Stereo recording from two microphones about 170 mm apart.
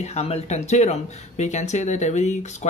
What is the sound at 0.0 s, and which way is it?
Speech, 40° left (ahead or behind).